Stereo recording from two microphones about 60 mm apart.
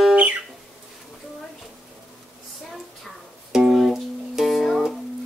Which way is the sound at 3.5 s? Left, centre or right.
Centre.